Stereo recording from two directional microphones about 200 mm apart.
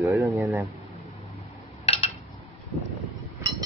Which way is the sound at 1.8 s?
30° left (ahead or behind).